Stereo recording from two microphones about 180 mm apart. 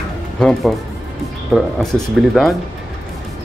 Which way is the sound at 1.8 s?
Centre (ahead or behind).